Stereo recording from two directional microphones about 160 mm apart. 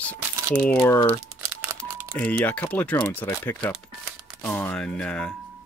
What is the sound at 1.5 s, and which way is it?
Crumpling, 15° right (ahead or behind).